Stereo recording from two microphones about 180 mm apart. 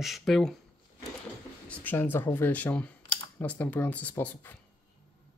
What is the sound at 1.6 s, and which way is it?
Speech, 10° left (ahead or behind).